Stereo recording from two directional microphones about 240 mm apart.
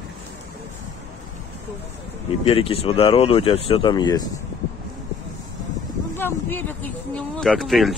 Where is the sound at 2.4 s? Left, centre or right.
Left.